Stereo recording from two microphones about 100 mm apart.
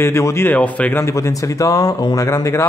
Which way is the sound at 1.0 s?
30° left (ahead or behind).